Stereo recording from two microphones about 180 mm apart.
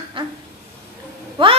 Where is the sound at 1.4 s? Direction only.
30° right (ahead or behind).